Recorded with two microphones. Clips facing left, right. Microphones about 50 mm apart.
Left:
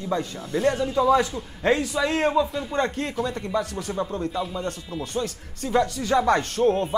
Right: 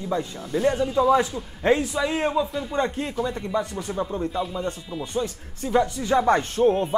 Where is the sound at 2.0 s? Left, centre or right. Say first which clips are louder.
Left 2 dB; centre.